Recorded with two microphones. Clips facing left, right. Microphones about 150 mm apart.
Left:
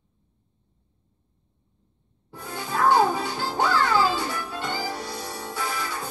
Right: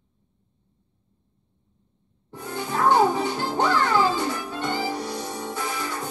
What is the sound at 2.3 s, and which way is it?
Music, 20° right (ahead or behind).